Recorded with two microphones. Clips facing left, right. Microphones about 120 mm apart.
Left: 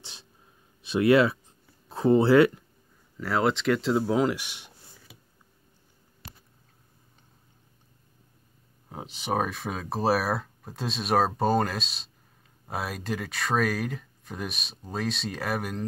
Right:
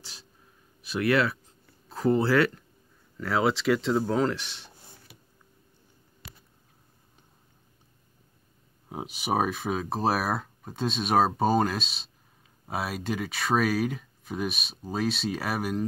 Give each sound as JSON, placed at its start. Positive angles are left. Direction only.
{"t": 0.0, "sound": "a sound", "side_deg": 20}
{"t": 0.8, "sound": "speech", "side_deg": 20}
{"t": 3.2, "sound": "speech", "side_deg": 0}
{"t": 8.8, "sound": "speech", "side_deg": -10}